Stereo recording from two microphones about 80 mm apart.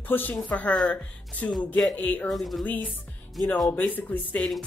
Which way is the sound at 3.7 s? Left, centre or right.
Left.